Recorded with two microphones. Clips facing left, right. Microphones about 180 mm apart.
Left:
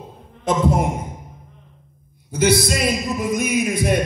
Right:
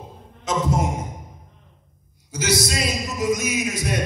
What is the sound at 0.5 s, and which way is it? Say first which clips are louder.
Speech: left 4 dB; 55° left (ahead or behind).